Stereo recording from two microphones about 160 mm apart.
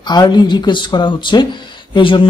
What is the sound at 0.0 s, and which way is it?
Speech, 25° left (ahead or behind).